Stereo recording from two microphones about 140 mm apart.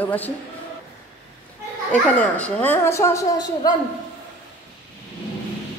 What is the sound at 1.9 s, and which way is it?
A child's voice, 10° left (ahead or behind).